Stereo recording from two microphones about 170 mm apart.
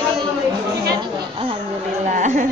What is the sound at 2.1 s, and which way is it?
Speech, 50° right (ahead or behind).